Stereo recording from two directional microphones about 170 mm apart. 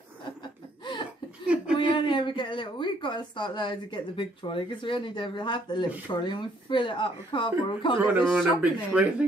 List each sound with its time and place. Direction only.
0.4 s laughter: 25° left (ahead or behind)
1.8 s speech: 30° left (ahead or behind)
8.2 s speech: 5° right (ahead or behind)